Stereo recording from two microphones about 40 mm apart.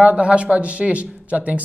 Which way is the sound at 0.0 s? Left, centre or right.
Right.